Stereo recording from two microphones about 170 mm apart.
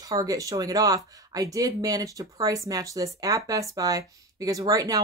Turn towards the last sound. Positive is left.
turn(degrees=-20)  # may be behind; listen again after turning